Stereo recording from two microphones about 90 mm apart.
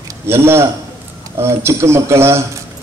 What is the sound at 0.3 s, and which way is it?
A man's voice, 30° right (ahead or behind).